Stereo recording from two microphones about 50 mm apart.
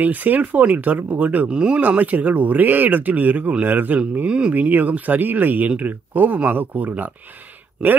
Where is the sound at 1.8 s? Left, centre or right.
Right.